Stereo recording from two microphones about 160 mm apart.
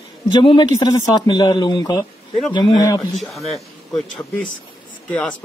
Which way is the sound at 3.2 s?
Centre (ahead or behind).